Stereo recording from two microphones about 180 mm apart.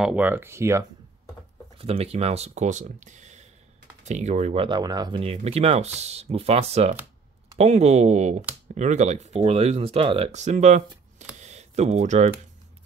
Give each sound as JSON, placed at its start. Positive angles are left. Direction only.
{"t": 0.0, "sound": "speech", "side_deg": -10}
{"t": 1.8, "sound": "speech", "side_deg": -35}
{"t": 4.6, "sound": "speech", "side_deg": -25}
{"t": 11.4, "sound": "a sound", "side_deg": -40}